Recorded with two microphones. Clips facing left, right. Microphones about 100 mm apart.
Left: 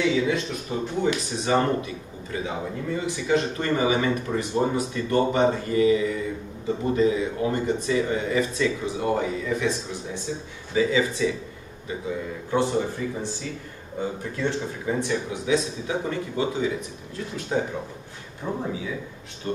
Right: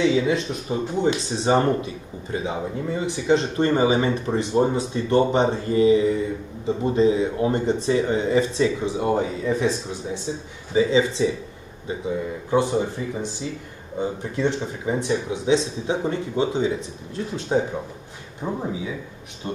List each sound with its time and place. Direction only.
0.0 s speech: 25° right (ahead or behind)
12.4 s speech: 15° right (ahead or behind)